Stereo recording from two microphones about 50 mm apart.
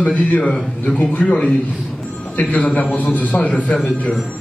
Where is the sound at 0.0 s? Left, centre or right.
Left.